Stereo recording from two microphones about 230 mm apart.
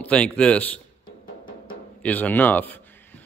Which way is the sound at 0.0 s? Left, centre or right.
Centre.